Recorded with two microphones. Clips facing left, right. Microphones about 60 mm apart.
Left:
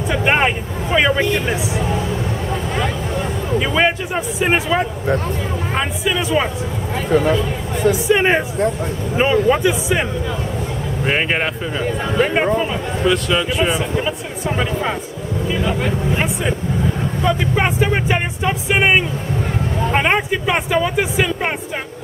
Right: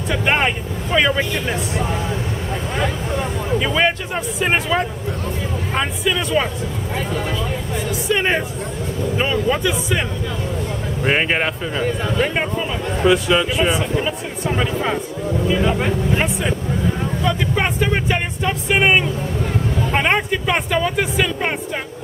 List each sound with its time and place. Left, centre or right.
0.1 s speech: centre
3.5 s speech: centre
7.2 s speech: left
8.1 s speech: centre
11.1 s speech: centre
17.2 s speech: centre